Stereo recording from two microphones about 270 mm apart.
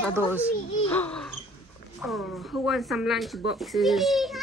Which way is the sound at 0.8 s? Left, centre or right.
Centre.